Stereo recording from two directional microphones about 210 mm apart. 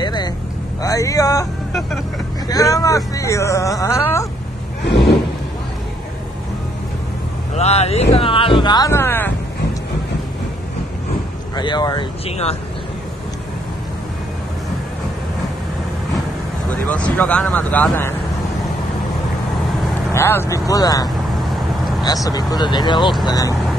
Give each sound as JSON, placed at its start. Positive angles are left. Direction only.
{"t": 0.0, "sound": "vehicle", "side_deg": 20}
{"t": 0.8, "sound": "speech", "side_deg": 15}
{"t": 7.5, "sound": "speech", "side_deg": 30}
{"t": 11.5, "sound": "speech", "side_deg": 20}
{"t": 16.9, "sound": "speech", "side_deg": 5}
{"t": 20.1, "sound": "speech", "side_deg": 10}